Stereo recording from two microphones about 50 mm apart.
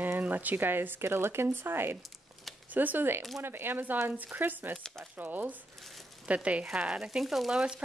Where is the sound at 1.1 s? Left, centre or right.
Right.